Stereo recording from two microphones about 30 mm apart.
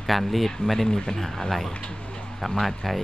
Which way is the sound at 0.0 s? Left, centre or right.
Centre.